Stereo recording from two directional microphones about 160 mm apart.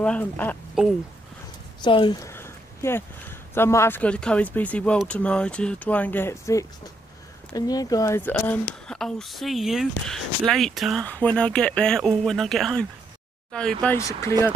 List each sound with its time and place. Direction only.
0.0 s speech: 10° left (ahead or behind)
0.8 s speech: 5° right (ahead or behind)
1.8 s speech: 30° left (ahead or behind)
2.2 s speech: 15° left (ahead or behind)
13.9 s speech: 20° left (ahead or behind)